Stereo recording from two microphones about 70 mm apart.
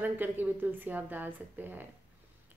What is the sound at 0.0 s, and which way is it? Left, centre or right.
Speech, right.